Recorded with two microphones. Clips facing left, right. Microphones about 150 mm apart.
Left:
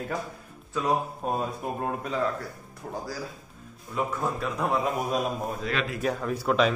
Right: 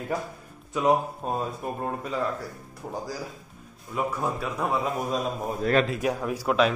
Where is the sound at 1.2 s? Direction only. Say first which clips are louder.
Left 1 dB; centre (ahead or behind).